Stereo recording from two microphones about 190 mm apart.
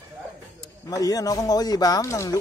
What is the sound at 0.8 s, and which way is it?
Speech, 20° left (ahead or behind).